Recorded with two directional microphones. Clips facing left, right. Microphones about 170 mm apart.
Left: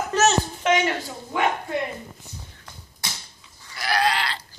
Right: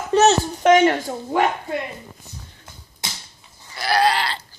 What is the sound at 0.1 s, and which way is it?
A child's voice, 35° right (ahead or behind).